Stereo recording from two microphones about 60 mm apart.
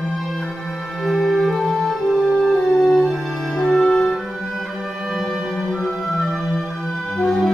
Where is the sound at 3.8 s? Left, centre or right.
Centre.